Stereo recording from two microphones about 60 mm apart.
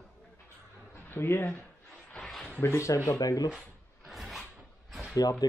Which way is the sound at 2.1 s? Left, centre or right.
Centre.